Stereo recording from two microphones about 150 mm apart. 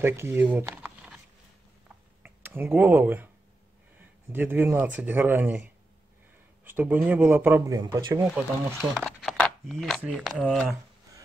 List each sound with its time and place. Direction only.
0.0 s speech: 15° right (ahead or behind)
0.8 s a sound: 5° right (ahead or behind)
2.2 s speech: 15° right (ahead or behind)
4.3 s speech: 15° right (ahead or behind)
7.7 s speech: 25° right (ahead or behind)
8.7 s speech: 5° left (ahead or behind)